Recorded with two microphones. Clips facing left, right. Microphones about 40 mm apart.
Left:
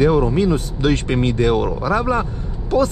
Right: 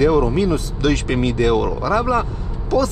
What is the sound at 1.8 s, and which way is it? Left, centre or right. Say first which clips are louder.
Speech: right 1 dB; left.